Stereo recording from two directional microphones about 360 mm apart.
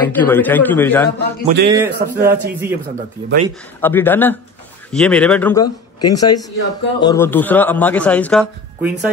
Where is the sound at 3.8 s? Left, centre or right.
Centre.